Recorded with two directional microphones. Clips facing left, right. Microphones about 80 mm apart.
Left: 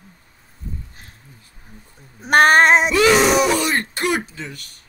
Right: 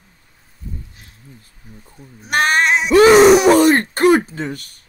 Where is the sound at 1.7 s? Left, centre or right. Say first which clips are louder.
Right 3 dB; left.